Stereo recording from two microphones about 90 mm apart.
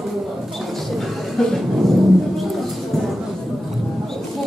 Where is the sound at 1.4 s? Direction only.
5° left (ahead or behind).